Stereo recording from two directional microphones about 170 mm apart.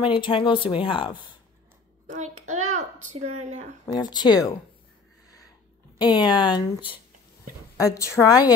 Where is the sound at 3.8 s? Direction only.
25° left (ahead or behind).